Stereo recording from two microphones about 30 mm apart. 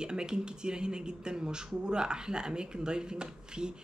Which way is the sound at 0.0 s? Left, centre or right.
Right.